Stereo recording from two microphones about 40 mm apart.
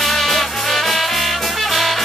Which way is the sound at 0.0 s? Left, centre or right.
Centre.